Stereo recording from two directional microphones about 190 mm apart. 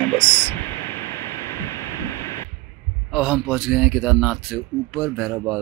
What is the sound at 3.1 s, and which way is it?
A man's voice, centre (ahead or behind).